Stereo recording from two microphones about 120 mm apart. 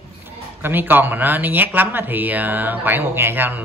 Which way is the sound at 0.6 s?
15° right (ahead or behind).